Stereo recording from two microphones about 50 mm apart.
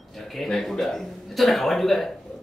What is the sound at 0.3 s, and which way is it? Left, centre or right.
A man's voice, centre.